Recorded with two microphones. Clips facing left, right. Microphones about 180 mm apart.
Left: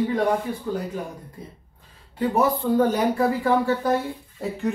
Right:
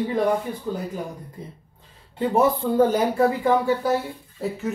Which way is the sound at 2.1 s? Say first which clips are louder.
Right 1 dB; 25° right (ahead or behind).